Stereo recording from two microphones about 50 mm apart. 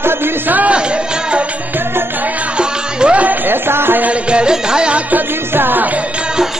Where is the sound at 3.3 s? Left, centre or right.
Right.